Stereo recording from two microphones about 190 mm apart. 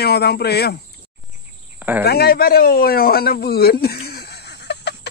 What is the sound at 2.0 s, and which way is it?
Speech, 55° left (ahead or behind).